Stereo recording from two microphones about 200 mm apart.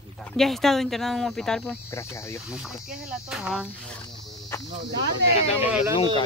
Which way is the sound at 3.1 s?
5° right (ahead or behind).